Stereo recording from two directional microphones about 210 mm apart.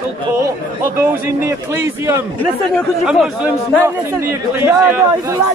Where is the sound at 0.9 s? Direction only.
10° right (ahead or behind).